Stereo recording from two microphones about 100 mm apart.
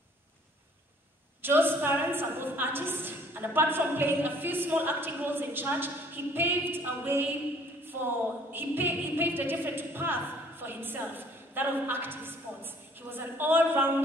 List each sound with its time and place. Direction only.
1.4 s a woman's voice: 20° right (ahead or behind)